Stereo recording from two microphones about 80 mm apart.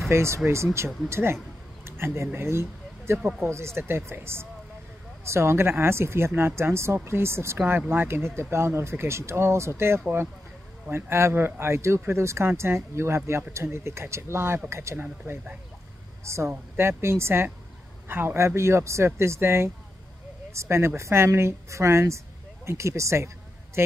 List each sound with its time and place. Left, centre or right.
0.1 s speech: right
1.9 s a sound: right
2.3 s speech: right
7.5 s speech: right